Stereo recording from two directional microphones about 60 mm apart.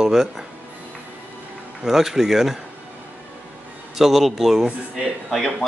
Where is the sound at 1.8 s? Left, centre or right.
Centre.